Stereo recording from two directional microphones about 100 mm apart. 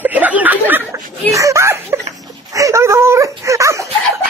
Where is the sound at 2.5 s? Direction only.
30° right (ahead or behind).